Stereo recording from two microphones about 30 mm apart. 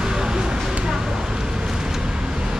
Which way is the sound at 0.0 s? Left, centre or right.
Right.